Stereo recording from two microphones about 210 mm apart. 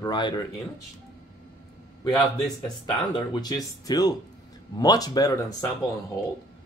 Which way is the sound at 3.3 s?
20° left (ahead or behind).